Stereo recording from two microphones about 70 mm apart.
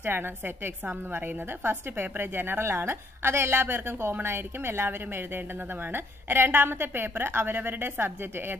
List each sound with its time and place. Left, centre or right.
0.0 s a woman's voice: right